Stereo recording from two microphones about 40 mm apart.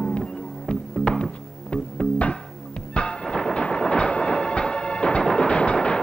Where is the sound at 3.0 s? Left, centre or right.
Left.